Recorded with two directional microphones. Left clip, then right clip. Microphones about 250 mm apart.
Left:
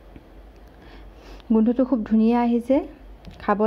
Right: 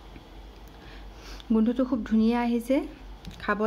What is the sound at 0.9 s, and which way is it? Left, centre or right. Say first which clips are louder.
Speech: even; centre.